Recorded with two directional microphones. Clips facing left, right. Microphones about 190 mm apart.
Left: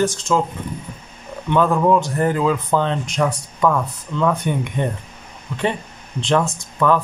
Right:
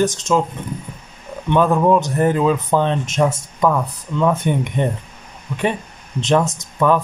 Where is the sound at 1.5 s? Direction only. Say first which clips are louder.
Right 1 dB; 15° right (ahead or behind).